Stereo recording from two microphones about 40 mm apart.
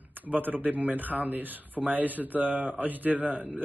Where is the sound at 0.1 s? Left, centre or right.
Right.